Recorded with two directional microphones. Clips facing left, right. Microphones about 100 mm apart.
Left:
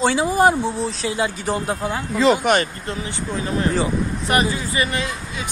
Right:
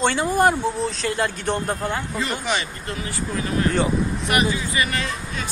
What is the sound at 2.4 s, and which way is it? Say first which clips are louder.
Speech: left 7 dB; 50° left (ahead or behind).